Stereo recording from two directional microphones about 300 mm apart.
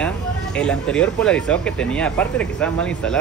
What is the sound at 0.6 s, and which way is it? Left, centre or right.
Speech, centre.